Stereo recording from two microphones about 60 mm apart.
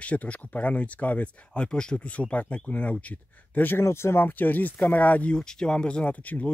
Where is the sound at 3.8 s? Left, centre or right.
Left.